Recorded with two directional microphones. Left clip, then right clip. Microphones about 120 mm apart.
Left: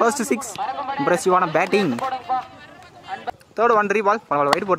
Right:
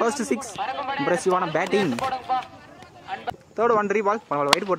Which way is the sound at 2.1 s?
20° left (ahead or behind).